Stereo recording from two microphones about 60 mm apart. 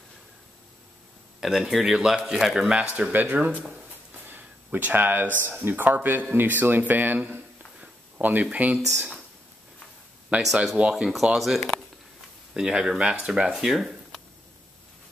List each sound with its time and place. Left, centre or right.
1.4 s speech: centre
2.7 s speech: centre
8.7 s speech: centre
10.4 s speech: centre